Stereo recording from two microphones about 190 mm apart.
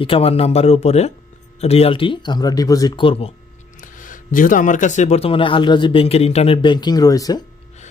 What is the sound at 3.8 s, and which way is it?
Speech, 45° left (ahead or behind).